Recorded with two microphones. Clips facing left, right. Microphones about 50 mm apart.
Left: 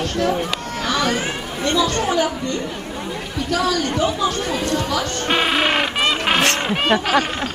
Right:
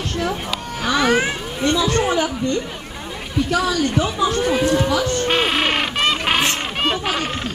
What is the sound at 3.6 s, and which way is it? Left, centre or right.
Speech, centre.